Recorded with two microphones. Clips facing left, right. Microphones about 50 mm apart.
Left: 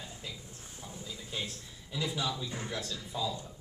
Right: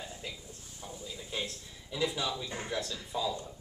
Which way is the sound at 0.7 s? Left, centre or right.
Centre.